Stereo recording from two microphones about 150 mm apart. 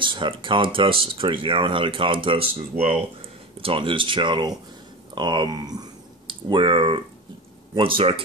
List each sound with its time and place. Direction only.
0.0 s speech: 35° right (ahead or behind)
3.5 s speech: 35° right (ahead or behind)